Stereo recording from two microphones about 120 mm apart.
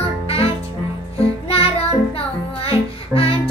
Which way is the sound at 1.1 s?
55° left (ahead or behind).